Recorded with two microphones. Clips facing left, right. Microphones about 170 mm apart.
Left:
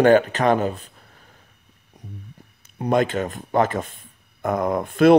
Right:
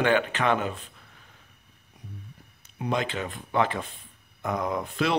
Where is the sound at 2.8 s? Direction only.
50° left (ahead or behind).